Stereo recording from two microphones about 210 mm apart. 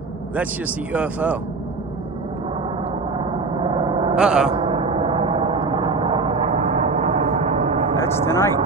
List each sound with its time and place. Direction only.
0.9 s speech: 5° right (ahead or behind)
3.2 s gong: 20° right (ahead or behind)
4.1 s speech: 5° right (ahead or behind)
4.5 s gong: 25° right (ahead or behind)
8.0 s speech: 10° left (ahead or behind)